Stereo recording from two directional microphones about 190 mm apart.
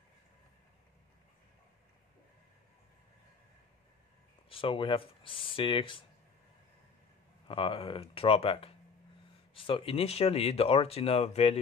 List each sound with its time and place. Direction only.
4.5 s speech: 30° left (ahead or behind)
7.4 s speech: 30° left (ahead or behind)